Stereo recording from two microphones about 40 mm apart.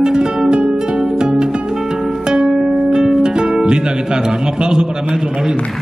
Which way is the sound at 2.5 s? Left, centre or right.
Centre.